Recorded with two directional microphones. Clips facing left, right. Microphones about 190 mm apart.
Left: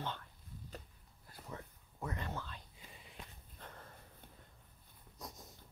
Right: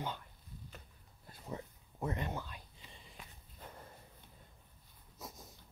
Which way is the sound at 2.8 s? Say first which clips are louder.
Even; 50° left (ahead or behind).